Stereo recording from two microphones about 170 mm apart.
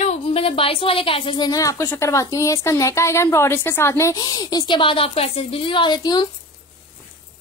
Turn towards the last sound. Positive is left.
turn(degrees=25)  # may be behind; listen again after turning